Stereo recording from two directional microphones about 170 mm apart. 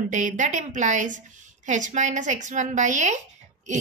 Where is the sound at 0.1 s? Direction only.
45° right (ahead or behind).